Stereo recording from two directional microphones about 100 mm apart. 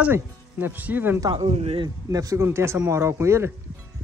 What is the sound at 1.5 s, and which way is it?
Speech, 90° right.